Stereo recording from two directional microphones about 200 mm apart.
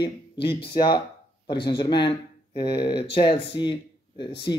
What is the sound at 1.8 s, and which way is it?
Speech, 25° left (ahead or behind).